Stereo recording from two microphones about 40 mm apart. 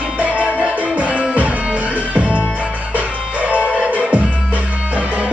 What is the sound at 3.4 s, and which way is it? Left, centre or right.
Music, right.